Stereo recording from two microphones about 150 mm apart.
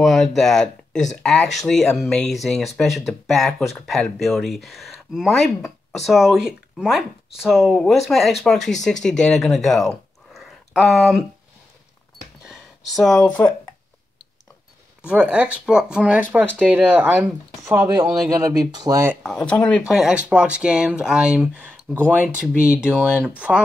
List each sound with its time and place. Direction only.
0.0 s speech: centre (ahead or behind)
12.4 s a sound: centre (ahead or behind)
15.0 s speech: 5° right (ahead or behind)
18.3 s speech: 25° right (ahead or behind)
19.2 s speech: 5° left (ahead or behind)
19.9 s speech: 5° right (ahead or behind)
21.9 s speech: 10° left (ahead or behind)
22.6 s speech: 5° right (ahead or behind)